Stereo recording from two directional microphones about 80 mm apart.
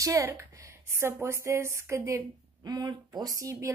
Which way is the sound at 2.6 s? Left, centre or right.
Right.